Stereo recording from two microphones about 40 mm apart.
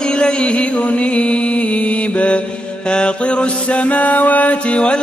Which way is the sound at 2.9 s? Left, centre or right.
Left.